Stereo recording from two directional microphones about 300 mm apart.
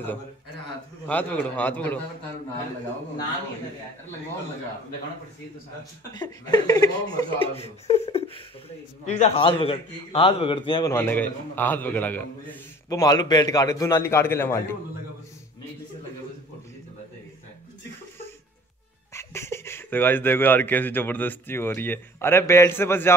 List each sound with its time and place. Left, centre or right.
1.0 s a man's voice: centre
6.1 s a man's voice: centre
19.1 s speech: centre